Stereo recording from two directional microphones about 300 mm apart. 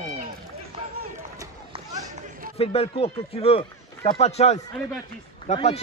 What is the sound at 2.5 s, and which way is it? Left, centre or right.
Speech, centre.